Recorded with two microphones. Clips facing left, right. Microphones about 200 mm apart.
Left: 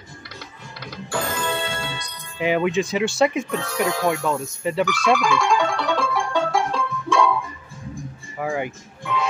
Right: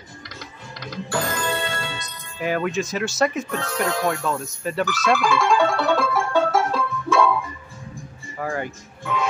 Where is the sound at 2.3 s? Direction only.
20° left (ahead or behind).